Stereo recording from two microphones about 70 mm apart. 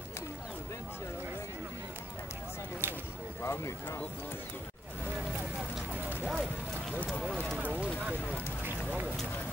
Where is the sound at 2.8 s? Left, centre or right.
Right.